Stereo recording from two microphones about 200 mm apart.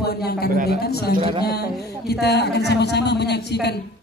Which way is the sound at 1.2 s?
30° right (ahead or behind).